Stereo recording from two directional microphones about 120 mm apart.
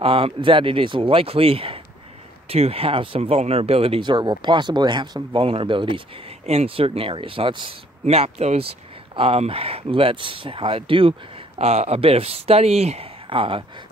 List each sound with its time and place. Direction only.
0.0 s speech: 50° right (ahead or behind)
5.4 s speech: 50° right (ahead or behind)
6.4 s speech: 60° right (ahead or behind)
8.0 s speech: 60° right (ahead or behind)